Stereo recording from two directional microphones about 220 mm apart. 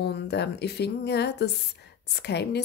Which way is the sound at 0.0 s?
50° left (ahead or behind).